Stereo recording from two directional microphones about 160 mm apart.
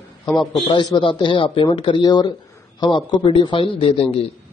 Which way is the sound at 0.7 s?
30° left (ahead or behind).